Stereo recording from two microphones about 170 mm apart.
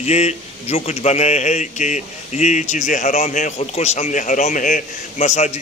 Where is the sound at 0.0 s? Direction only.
40° left (ahead or behind).